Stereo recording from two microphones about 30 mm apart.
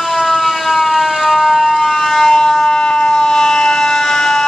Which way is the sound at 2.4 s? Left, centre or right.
Left.